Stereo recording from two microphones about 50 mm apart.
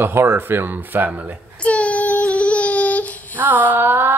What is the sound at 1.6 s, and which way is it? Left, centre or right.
Child singing, left.